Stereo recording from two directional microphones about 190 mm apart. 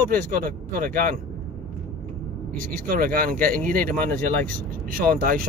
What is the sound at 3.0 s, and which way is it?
Speech, 50° right (ahead or behind).